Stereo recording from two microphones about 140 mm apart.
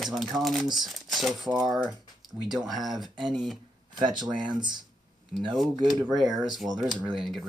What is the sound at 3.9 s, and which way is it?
Speech, 30° right (ahead or behind).